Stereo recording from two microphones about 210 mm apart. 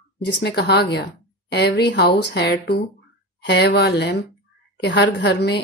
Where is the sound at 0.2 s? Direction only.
55° left (ahead or behind).